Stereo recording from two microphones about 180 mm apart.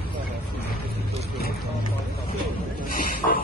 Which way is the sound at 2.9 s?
55° left (ahead or behind).